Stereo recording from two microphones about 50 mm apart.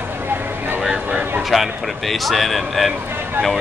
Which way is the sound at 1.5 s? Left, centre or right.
Centre.